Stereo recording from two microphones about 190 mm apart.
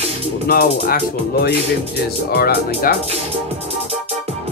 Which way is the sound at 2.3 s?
55° left (ahead or behind).